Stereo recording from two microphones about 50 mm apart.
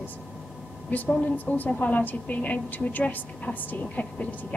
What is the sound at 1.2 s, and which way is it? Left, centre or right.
A woman's voice, left.